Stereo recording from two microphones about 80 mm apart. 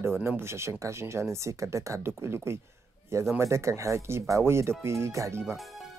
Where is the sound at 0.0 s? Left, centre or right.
Right.